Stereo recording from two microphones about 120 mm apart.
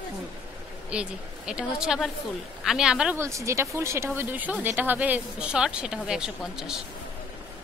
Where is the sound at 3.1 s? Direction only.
25° right (ahead or behind).